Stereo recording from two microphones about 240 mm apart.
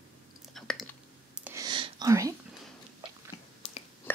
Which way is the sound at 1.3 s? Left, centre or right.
Centre.